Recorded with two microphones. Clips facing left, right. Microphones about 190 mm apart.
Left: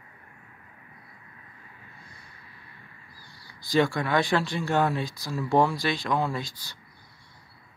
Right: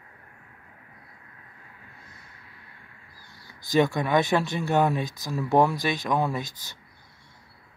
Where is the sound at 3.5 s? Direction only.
20° right (ahead or behind).